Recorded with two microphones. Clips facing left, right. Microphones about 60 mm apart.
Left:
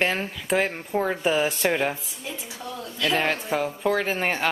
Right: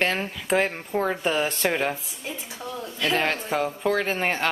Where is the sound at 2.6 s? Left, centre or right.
Centre.